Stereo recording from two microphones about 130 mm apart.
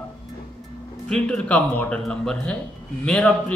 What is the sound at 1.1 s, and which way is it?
A man's voice, 10° left (ahead or behind).